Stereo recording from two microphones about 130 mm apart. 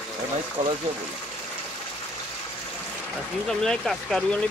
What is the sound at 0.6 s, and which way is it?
Speech, 70° right (ahead or behind).